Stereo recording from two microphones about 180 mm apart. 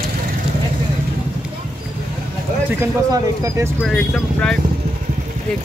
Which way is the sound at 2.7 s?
15° right (ahead or behind).